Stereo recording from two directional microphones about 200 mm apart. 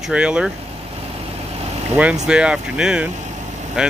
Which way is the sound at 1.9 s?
5° right (ahead or behind).